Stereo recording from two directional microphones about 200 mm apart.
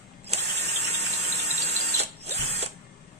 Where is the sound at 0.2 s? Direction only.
35° right (ahead or behind).